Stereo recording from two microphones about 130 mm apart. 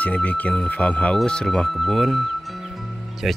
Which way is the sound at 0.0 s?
10° left (ahead or behind).